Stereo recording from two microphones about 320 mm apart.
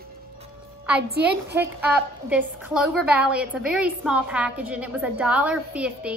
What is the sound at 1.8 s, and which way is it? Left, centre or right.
A woman's voice, centre.